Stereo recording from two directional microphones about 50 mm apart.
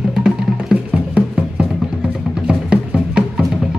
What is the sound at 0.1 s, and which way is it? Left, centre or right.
Music, centre.